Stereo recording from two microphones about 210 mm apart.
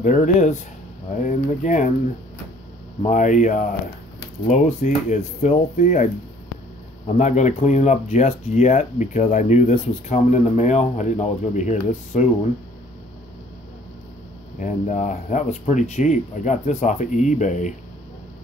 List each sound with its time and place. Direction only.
0.0 s speech: 35° left (ahead or behind)
3.0 s speech: 35° left (ahead or behind)
7.2 s speech: 35° left (ahead or behind)
14.6 s speech: 35° left (ahead or behind)